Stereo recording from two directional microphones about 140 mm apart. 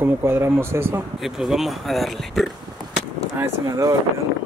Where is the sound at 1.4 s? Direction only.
Centre (ahead or behind).